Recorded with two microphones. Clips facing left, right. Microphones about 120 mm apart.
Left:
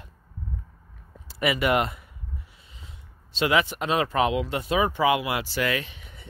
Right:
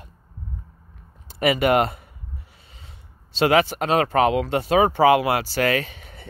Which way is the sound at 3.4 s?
55° right (ahead or behind).